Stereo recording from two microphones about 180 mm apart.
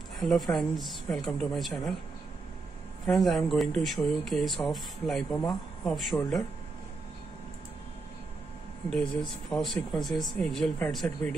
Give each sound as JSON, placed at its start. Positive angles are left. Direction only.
{"t": 0.2, "sound": "speech", "side_deg": 0}
{"t": 3.1, "sound": "speech", "side_deg": 0}
{"t": 8.9, "sound": "speech", "side_deg": 0}